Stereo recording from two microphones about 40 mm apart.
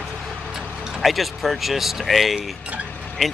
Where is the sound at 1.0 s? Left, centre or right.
Centre.